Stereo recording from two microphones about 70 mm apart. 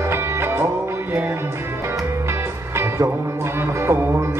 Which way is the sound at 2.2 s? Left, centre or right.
Right.